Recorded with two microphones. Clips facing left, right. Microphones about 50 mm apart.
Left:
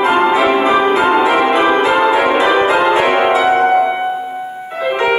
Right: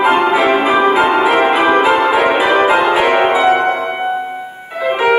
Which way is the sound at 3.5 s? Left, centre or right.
Right.